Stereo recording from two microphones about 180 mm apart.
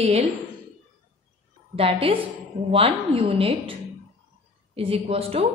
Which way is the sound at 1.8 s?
30° right (ahead or behind).